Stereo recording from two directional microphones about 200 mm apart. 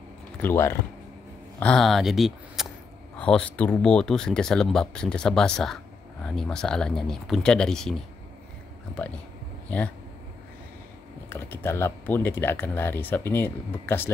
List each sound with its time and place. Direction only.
0.4 s speech: 10° left (ahead or behind)
11.2 s speech: 10° left (ahead or behind)